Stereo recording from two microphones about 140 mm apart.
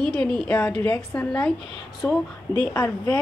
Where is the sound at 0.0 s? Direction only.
5° left (ahead or behind).